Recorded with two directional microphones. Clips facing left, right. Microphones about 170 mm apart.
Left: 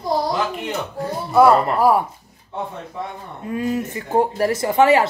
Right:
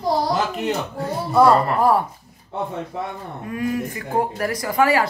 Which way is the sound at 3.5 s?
25° left (ahead or behind).